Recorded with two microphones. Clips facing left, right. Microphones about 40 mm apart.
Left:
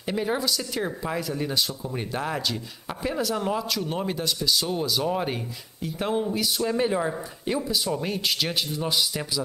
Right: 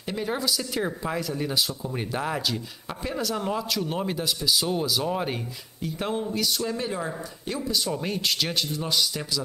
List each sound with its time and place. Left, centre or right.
0.0 s speech: centre
6.6 s speech: centre
7.7 s speech: centre